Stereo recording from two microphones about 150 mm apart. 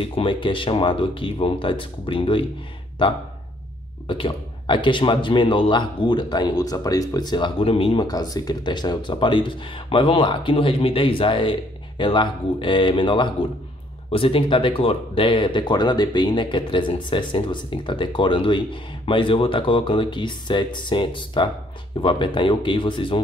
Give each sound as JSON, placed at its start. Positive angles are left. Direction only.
{"t": 0.0, "sound": "speech", "side_deg": 35}
{"t": 4.1, "sound": "speech", "side_deg": 30}